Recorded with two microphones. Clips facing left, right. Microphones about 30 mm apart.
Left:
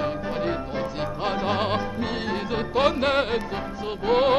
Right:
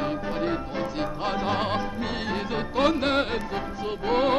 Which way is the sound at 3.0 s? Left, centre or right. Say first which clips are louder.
Left 2 dB; left.